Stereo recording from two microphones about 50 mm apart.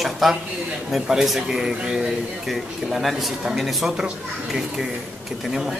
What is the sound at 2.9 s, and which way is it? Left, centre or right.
Speech, centre.